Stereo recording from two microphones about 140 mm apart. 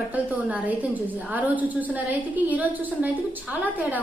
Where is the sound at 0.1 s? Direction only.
10° right (ahead or behind).